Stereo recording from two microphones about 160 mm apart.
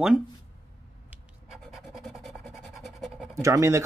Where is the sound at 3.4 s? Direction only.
20° right (ahead or behind).